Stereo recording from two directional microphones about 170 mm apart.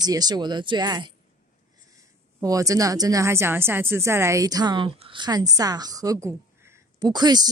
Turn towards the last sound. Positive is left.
turn(degrees=-25)  # may be behind; listen again after turning